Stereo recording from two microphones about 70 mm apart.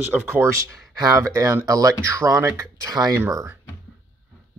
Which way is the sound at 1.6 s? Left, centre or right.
Right.